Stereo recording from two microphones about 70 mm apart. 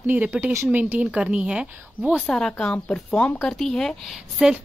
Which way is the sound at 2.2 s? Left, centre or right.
Centre.